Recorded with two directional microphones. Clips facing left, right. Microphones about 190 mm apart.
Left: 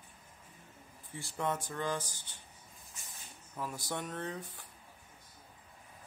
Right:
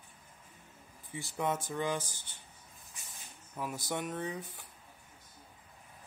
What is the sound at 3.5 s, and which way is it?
Speech, 10° right (ahead or behind).